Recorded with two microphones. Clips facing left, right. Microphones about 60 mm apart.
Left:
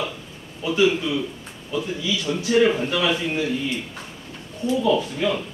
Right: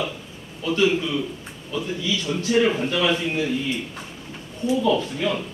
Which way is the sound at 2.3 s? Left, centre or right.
Centre.